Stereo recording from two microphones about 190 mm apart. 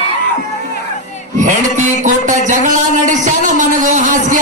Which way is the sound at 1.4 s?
40° right (ahead or behind).